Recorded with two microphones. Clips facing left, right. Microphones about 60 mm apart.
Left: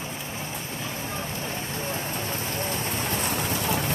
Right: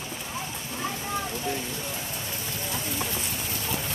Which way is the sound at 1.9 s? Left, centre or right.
Left.